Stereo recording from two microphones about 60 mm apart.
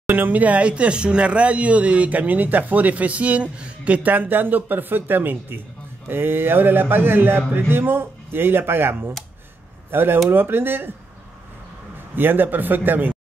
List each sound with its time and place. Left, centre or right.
0.1 s speech: right
12.2 s speech: right